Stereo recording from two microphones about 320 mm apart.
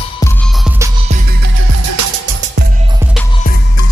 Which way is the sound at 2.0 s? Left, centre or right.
Right.